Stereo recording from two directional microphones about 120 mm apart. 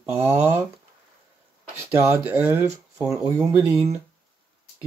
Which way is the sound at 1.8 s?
15° right (ahead or behind).